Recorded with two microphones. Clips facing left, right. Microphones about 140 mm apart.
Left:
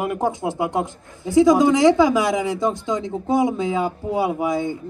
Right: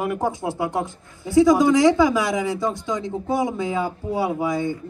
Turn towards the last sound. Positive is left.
turn(degrees=20)  # may be behind; listen again after turning